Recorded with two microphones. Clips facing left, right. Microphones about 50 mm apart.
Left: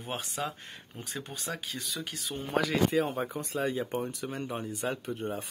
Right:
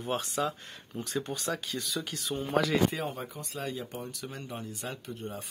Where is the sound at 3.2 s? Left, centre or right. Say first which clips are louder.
Left 6 dB; left.